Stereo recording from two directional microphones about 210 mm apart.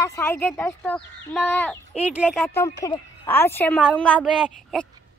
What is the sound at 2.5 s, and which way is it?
Speech, 15° left (ahead or behind).